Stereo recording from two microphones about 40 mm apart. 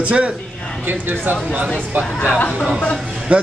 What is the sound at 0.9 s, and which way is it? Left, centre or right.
Speech, right.